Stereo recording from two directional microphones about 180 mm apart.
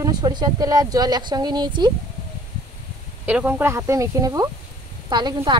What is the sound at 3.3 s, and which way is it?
Speech, 10° right (ahead or behind).